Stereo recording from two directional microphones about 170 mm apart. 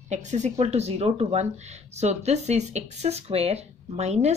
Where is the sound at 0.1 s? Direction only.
45° right (ahead or behind).